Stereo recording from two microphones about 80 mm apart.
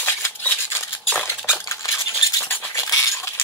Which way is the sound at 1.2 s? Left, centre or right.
Left.